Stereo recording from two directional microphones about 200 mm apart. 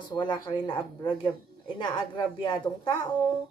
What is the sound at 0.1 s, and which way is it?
A woman's voice, 25° left (ahead or behind).